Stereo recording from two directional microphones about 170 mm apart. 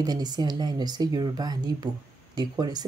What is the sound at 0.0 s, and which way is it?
Speech, 25° right (ahead or behind).